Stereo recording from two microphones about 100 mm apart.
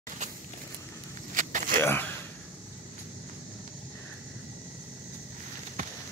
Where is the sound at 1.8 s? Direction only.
20° left (ahead or behind).